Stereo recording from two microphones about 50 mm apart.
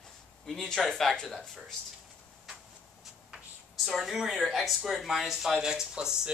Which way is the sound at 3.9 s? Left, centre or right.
Centre.